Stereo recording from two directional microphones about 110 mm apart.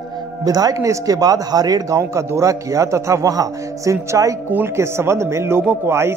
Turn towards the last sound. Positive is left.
turn(degrees=-25)  # may be behind; listen again after turning